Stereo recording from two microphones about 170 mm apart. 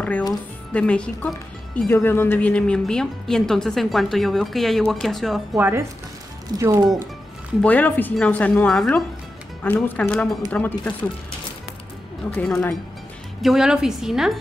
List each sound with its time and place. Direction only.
0.3 s a woman's voice: 5° left (ahead or behind)
5.5 s speech: 15° right (ahead or behind)
7.6 s speech: 10° left (ahead or behind)
12.3 s a woman's voice: 5° left (ahead or behind)